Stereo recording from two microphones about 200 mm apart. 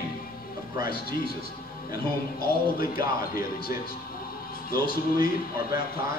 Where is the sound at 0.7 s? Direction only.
50° left (ahead or behind).